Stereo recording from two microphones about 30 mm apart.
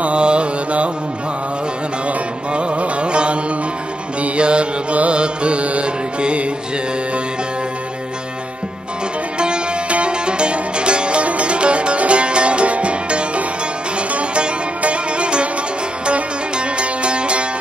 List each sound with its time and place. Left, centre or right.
0.0 s carnatic music: right
2.5 s music: right
4.4 s mantra: right
5.1 s music: right
9.8 s music: right
14.8 s music: right